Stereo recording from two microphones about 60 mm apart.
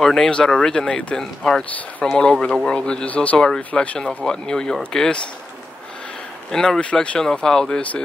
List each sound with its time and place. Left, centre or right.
0.0 s speech: centre
6.5 s speech: centre